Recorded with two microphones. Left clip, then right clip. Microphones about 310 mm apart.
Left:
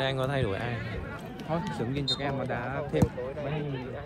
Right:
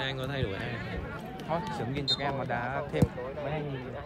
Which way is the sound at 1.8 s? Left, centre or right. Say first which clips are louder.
Even; right.